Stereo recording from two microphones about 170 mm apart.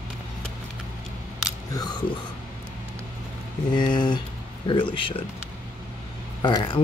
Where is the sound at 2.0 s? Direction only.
30° left (ahead or behind).